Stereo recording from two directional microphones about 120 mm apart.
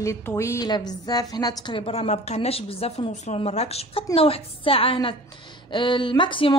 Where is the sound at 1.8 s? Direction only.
60° left (ahead or behind).